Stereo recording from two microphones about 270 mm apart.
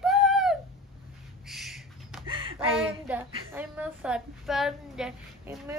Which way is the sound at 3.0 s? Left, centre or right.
Centre.